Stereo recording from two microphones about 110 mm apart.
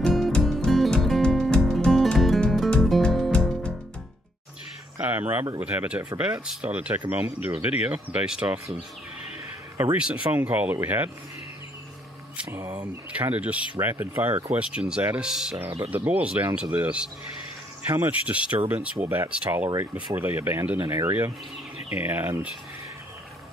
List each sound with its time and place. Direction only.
0.0 s music: 5° left (ahead or behind)
4.9 s a sound: 15° right (ahead or behind)
5.6 s speech: 15° right (ahead or behind)
10.3 s speech: 15° right (ahead or behind)
12.5 s speech: 30° right (ahead or behind)
12.8 s speech: 15° right (ahead or behind)